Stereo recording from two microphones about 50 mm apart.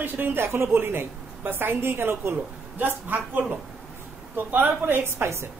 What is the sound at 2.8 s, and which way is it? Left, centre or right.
Speech, right.